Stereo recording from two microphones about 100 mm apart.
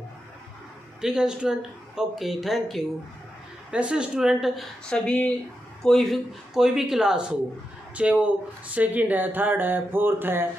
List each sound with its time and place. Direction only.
1.0 s a woman's voice: 5° right (ahead or behind)
4.8 s speech: 10° left (ahead or behind); by 10.5 s 20° right (ahead or behind)